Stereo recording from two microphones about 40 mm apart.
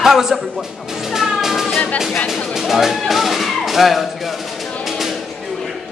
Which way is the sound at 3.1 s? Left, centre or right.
Centre.